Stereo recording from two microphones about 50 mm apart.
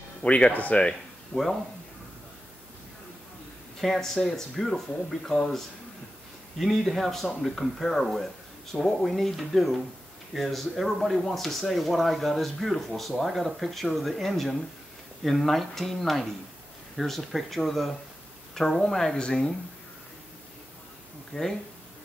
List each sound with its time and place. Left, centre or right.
0.2 s speech: left
1.3 s speech: centre
3.8 s speech: centre
6.6 s speech: centre
19.1 s speech: centre
21.3 s speech: centre